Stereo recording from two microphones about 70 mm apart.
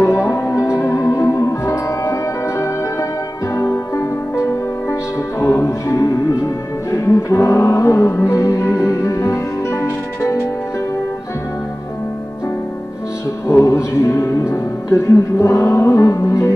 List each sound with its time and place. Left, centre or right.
0.0 s music: left
3.5 s music: left
5.4 s music: left
13.5 s music: left